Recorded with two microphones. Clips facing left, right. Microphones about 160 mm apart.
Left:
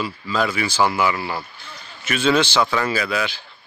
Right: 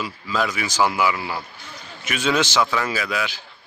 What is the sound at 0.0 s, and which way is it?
Speech, 10° right (ahead or behind).